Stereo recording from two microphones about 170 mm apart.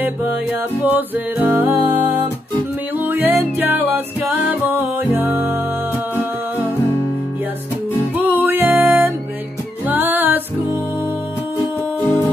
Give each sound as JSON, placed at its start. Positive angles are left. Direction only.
{"t": 0.8, "sound": "music", "side_deg": -10}
{"t": 8.1, "sound": "music", "side_deg": -10}
{"t": 12.0, "sound": "music", "side_deg": 15}